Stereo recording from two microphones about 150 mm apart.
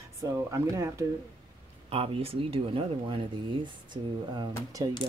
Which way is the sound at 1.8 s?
40° right (ahead or behind).